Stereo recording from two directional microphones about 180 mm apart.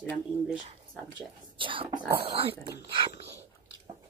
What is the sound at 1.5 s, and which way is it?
Speech, 30° right (ahead or behind).